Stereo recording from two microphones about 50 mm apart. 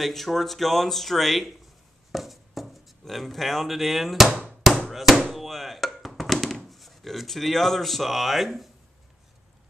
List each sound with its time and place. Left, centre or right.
0.0 s speech: centre
4.3 s hammer: right
4.8 s hammer: centre
5.3 s a sound: centre
6.7 s speech: centre